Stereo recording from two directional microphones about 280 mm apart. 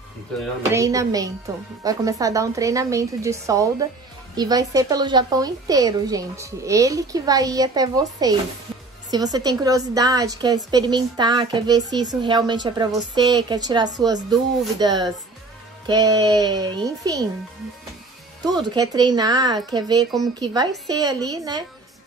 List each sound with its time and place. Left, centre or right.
0.6 s a woman's voice: centre
18.4 s a woman's voice: centre